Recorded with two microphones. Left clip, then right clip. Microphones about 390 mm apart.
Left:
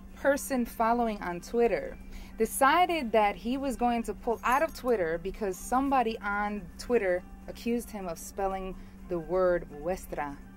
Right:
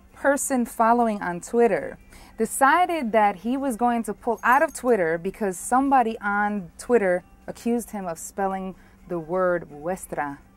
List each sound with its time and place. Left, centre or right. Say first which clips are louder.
0.2 s a woman's voice: right 5 dB; right